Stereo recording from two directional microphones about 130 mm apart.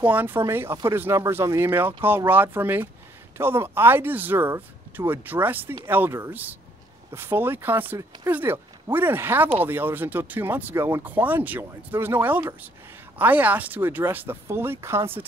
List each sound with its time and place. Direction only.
0.0 s speech: 15° right (ahead or behind)